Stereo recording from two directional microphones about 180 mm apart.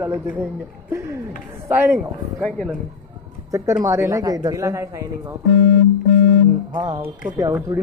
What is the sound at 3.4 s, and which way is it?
A woman's voice, 20° right (ahead or behind).